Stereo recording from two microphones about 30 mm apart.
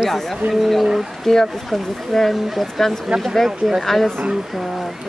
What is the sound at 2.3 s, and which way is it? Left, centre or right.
Speech, centre.